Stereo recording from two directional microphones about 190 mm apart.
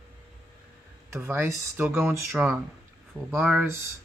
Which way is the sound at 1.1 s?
15° right (ahead or behind).